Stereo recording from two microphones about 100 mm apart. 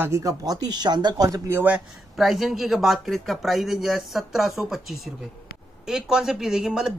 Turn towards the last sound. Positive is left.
turn(degrees=-5)  # may be behind; listen again after turning